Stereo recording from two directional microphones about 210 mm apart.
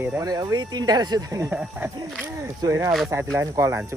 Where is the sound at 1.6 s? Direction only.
Centre (ahead or behind).